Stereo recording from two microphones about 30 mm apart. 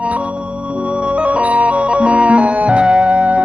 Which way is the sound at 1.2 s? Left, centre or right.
Right.